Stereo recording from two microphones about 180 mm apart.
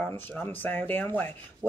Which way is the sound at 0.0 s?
10° left (ahead or behind).